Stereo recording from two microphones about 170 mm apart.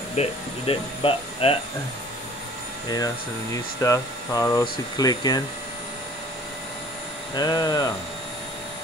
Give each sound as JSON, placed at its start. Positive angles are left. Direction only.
{"t": 0.1, "sound": "speech", "side_deg": 35}
{"t": 3.8, "sound": "speech", "side_deg": 20}
{"t": 7.3, "sound": "speech", "side_deg": 25}